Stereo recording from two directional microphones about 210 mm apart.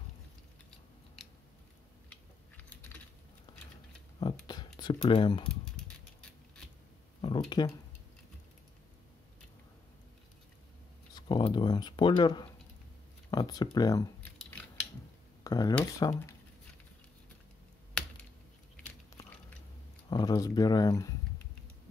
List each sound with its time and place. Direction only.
2.0 s typing: 5° left (ahead or behind)
4.2 s speech: 20° left (ahead or behind)
7.2 s a sound: 25° left (ahead or behind)
11.1 s speech: 20° left (ahead or behind)
15.4 s a sound: 15° left (ahead or behind)
15.8 s speech: 15° left (ahead or behind)
20.1 s speech: 20° left (ahead or behind)